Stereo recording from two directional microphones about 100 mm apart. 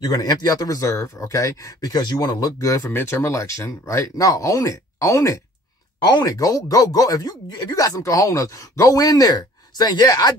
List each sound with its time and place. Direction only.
0.0 s speech: 40° left (ahead or behind)